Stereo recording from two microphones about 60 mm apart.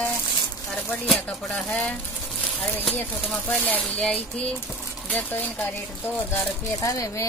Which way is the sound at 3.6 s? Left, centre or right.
Left.